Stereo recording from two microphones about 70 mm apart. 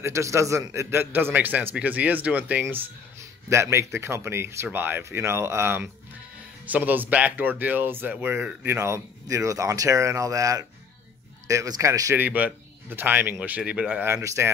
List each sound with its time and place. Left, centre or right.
0.0 s a man's voice: right; by 2.6 s centre
3.4 s speech: right
6.6 s a man's voice: right
8.6 s speech: right
12.2 s a man's voice: right
13.4 s a man's voice: centre
14.0 s speech: right